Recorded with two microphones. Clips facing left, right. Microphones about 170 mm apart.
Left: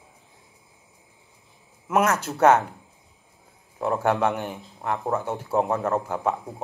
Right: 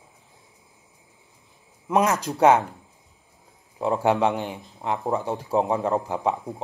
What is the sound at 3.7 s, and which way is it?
A man's voice, 15° right (ahead or behind).